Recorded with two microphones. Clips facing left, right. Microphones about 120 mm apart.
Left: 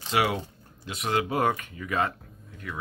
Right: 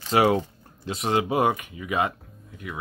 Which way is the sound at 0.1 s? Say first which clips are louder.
Right 6 dB; 40° right (ahead or behind).